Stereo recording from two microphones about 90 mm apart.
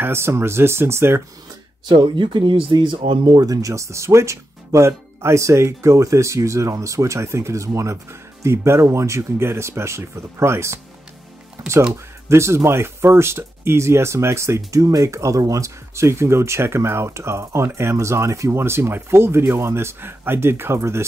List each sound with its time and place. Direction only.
0.0 s speech: 30° right (ahead or behind)
1.9 s speech: 60° right (ahead or behind); by 10.8 s 30° right (ahead or behind)
11.9 s speech: 30° right (ahead or behind)